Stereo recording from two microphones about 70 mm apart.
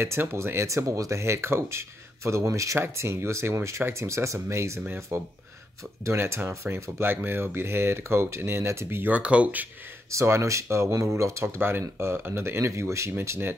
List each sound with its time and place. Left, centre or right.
0.0 s speech: right
9.1 s speech: centre
10.1 s speech: right